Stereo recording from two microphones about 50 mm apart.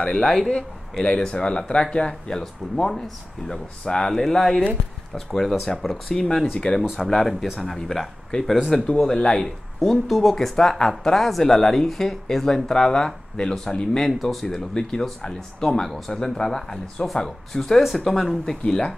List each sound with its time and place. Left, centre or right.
0.0 s speech: centre
8.3 s speech: centre
9.4 s speech: centre
18.6 s speech: left